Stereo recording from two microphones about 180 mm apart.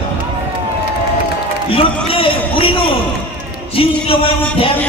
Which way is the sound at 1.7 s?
30° left (ahead or behind).